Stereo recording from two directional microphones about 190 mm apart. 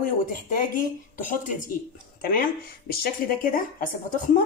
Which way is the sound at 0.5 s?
45° left (ahead or behind).